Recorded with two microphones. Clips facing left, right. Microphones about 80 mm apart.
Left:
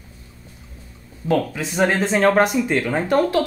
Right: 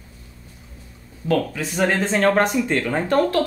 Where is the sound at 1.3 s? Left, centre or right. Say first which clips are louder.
Left 1 dB; centre.